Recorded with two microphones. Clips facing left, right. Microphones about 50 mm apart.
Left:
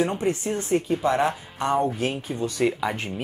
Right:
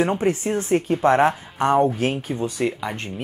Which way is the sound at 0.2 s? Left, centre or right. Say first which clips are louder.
Right 3 dB; right.